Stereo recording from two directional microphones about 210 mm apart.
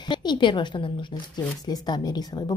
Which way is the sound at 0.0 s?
20° left (ahead or behind).